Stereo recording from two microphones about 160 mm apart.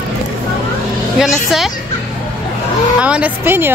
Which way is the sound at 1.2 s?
Centre (ahead or behind).